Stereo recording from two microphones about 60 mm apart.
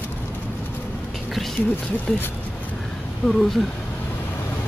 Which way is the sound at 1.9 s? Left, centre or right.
Left.